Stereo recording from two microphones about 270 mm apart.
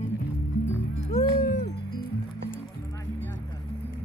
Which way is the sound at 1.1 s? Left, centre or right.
Left.